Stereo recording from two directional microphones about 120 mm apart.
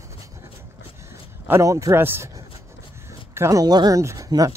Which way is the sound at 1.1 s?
20° right (ahead or behind).